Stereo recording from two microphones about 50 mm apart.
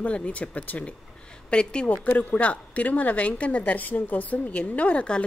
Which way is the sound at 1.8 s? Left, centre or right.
Left.